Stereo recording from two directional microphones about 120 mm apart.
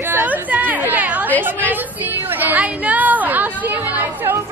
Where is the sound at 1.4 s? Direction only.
15° right (ahead or behind).